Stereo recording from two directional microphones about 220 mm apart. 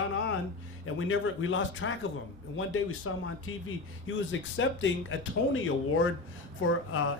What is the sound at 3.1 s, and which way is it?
Speech, 75° left (ahead or behind).